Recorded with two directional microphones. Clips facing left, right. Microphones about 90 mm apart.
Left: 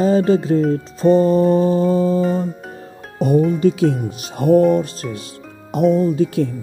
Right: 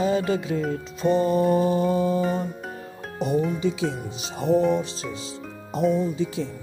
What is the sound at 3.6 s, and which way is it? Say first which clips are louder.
Speech: left 9 dB; 55° left (ahead or behind).